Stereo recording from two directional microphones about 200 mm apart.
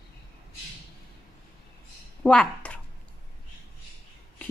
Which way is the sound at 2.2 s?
5° left (ahead or behind).